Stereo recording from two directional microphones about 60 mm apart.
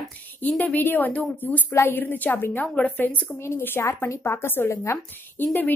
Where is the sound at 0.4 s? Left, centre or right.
Left.